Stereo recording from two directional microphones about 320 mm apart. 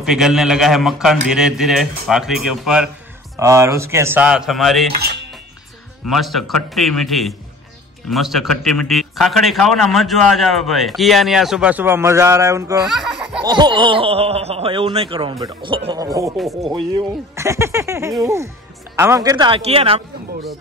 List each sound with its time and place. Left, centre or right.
0.0 s a man's voice: centre
6.0 s a man's voice: centre
13.5 s speech: centre